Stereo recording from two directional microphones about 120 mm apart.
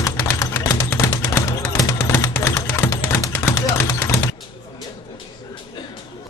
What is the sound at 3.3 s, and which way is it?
Gunshot, 20° left (ahead or behind).